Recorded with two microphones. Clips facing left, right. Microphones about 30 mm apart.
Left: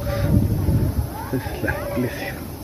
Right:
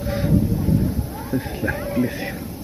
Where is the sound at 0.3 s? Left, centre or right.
Left.